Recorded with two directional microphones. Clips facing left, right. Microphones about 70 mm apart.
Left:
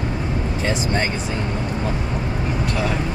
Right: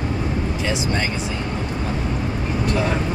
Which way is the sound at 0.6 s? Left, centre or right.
Left.